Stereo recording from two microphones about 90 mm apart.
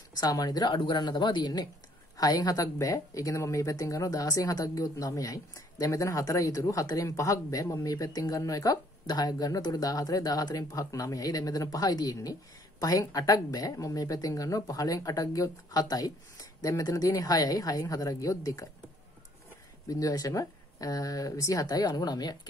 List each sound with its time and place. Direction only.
0.2 s speech: 45° left (ahead or behind)
19.9 s speech: 40° left (ahead or behind)